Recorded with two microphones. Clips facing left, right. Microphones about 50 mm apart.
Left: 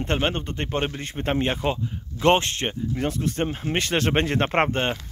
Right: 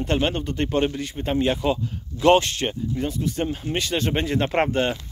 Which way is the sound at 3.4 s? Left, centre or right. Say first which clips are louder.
Left 1 dB; left.